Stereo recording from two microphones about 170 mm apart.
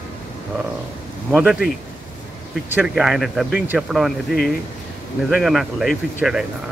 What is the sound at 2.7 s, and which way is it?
Speech, 5° right (ahead or behind).